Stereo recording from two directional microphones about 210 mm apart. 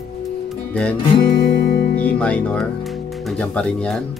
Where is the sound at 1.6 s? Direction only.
45° left (ahead or behind).